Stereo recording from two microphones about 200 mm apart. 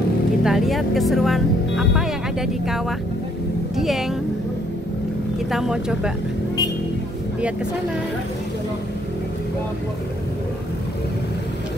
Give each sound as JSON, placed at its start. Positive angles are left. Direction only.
{"t": 0.4, "sound": "speech", "side_deg": 0}
{"t": 5.5, "sound": "speech", "side_deg": 0}